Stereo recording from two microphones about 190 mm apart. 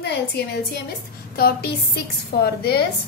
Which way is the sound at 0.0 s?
60° left (ahead or behind).